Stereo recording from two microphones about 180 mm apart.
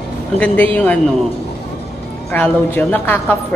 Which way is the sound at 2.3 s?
10° left (ahead or behind).